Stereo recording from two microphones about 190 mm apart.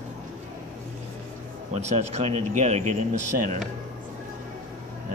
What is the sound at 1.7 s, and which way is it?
Speech, 35° right (ahead or behind).